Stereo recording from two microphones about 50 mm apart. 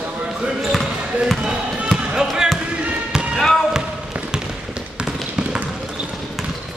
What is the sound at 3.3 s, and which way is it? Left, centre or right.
Basketball bounce, centre.